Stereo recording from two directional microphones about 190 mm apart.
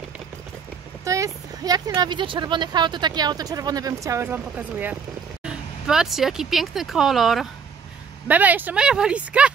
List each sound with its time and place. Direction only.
1.0 s speech: 15° right (ahead or behind)